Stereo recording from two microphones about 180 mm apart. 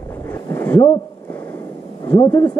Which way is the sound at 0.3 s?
15° left (ahead or behind).